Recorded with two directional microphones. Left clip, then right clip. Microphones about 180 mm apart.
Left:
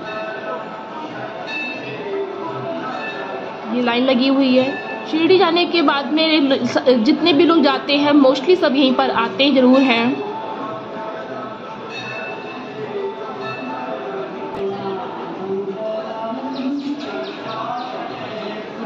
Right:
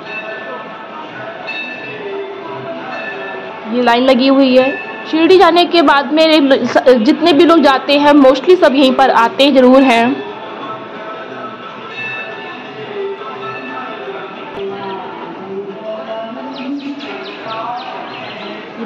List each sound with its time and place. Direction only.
3.7 s a woman's voice: 10° right (ahead or behind)